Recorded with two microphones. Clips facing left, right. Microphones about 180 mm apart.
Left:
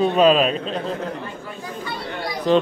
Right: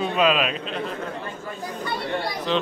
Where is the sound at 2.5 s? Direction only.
45° left (ahead or behind).